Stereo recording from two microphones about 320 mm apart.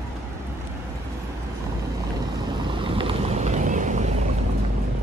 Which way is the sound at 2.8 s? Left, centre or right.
Centre.